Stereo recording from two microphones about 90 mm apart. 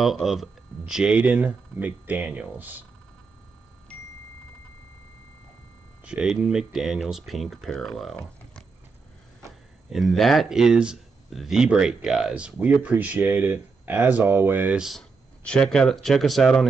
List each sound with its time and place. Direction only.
0.0 s speech: centre (ahead or behind); by 2.8 s 20° right (ahead or behind)
6.2 s speech: 5° right (ahead or behind)
9.8 s speech: centre (ahead or behind)
12.5 s speech: 20° right (ahead or behind)
14.8 s speech: centre (ahead or behind)